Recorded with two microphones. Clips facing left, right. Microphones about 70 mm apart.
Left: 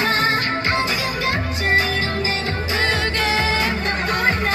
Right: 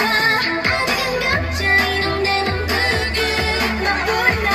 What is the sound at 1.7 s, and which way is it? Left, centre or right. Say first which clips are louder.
Music: right 2 dB; right.